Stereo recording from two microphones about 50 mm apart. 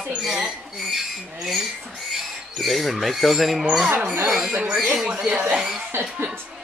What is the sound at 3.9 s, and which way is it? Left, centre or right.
Speech, right.